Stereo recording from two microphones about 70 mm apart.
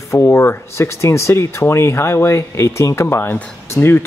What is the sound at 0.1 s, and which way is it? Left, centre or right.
Speech, left.